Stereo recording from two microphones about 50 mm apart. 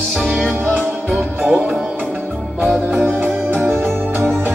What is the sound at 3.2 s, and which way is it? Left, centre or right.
Music, right.